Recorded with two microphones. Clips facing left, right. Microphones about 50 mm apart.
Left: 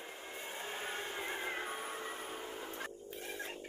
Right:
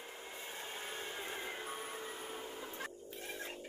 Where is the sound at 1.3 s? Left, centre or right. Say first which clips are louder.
Left 4 dB; left.